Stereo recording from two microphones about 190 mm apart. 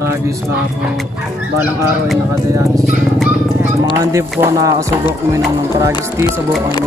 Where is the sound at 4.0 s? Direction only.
15° right (ahead or behind).